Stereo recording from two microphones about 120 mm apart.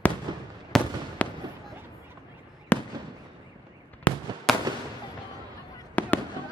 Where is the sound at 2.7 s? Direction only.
15° left (ahead or behind).